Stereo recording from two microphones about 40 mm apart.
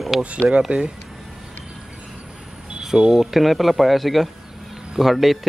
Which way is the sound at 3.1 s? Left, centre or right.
Centre.